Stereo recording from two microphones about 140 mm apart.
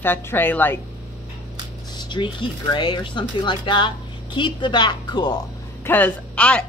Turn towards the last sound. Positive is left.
turn(degrees=10)  # may be behind; listen again after turning